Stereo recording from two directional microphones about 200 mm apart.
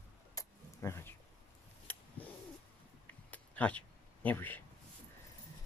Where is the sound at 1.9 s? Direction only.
10° left (ahead or behind).